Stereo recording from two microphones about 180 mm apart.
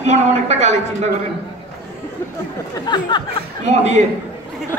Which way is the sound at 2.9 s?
25° left (ahead or behind).